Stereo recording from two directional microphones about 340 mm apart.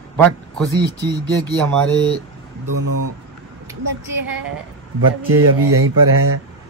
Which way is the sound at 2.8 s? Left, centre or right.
Right.